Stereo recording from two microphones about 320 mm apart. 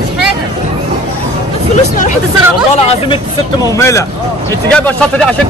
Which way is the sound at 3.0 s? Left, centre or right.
Centre.